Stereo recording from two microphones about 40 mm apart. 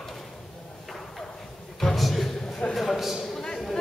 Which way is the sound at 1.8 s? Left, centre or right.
Centre.